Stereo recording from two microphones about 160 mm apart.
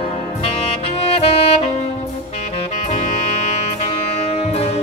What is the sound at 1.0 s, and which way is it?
Saxophone, 40° left (ahead or behind).